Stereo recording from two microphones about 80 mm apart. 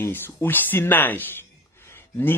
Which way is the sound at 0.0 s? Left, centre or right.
Left.